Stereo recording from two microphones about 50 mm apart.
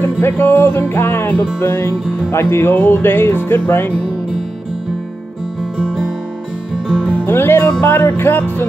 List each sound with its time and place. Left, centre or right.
0.0 s music: left
5.8 s music: centre
7.2 s music: left